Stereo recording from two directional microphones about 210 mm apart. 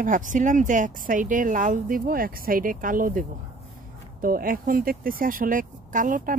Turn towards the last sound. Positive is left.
turn(degrees=-40)  # may be behind; listen again after turning